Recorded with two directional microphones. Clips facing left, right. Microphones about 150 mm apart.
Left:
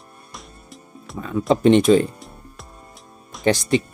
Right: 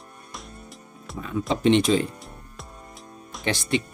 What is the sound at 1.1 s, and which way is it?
Music, centre (ahead or behind).